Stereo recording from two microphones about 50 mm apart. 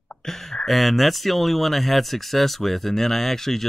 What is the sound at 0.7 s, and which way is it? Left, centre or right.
Speech, centre.